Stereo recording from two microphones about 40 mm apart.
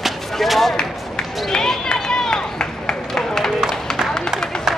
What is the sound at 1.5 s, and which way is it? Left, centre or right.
Run, centre.